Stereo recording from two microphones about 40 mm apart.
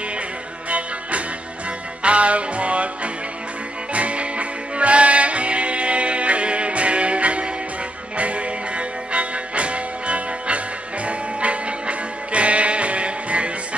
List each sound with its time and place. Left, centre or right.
0.7 s music: right
3.9 s music: right
12.3 s music: right